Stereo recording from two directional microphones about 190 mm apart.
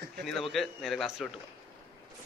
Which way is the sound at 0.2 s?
Centre (ahead or behind).